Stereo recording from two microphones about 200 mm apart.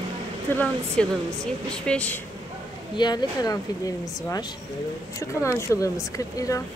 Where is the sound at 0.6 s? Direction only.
5° left (ahead or behind).